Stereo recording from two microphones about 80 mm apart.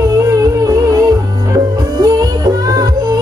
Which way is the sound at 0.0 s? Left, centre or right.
Right.